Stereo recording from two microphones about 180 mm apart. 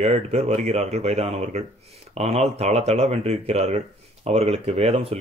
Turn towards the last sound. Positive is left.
turn(degrees=-35)  # may be behind; listen again after turning